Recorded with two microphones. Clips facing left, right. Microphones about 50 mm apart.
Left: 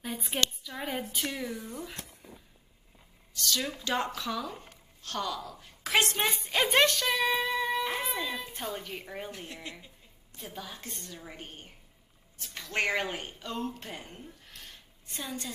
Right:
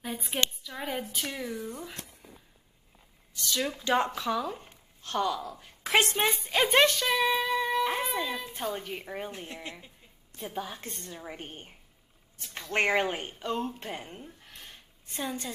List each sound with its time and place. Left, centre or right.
0.0 s a sound: centre
0.7 s speech: centre
3.3 s a woman's voice: centre
6.0 s a woman's voice: centre; by 11.1 s right
11.1 s a woman's voice: centre
14.0 s a sound: centre
15.1 s speech: centre